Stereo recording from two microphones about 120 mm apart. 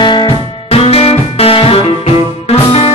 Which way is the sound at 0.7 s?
55° left (ahead or behind).